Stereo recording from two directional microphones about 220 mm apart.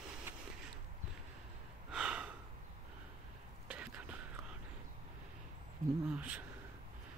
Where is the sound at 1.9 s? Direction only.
5° right (ahead or behind).